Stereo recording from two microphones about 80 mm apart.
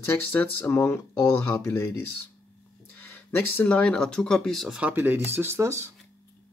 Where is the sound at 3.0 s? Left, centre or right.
Left; by 4.7 s centre.